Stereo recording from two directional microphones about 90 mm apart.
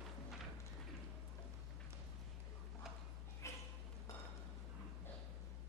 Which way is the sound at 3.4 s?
30° left (ahead or behind).